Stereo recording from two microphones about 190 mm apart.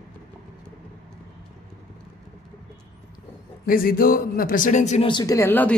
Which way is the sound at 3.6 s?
50° left (ahead or behind).